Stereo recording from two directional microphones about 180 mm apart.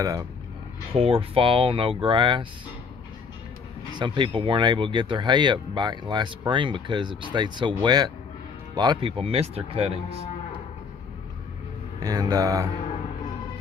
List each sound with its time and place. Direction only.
0.9 s speech: 30° right (ahead or behind)
4.0 s speech: 25° right (ahead or behind)
12.0 s speech: 20° right (ahead or behind)